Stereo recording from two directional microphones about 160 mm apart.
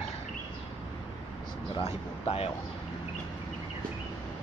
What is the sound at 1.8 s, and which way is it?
Speech, 40° left (ahead or behind).